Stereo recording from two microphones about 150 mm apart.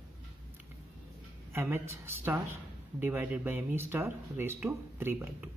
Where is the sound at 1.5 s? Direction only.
15° right (ahead or behind).